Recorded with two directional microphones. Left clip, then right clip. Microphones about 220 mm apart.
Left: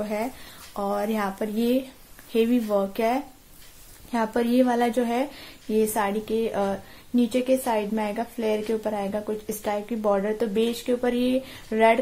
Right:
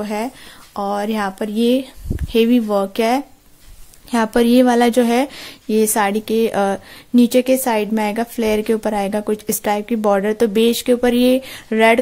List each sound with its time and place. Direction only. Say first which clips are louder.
0.0 s a woman's voice: right 5 dB; 35° right (ahead or behind)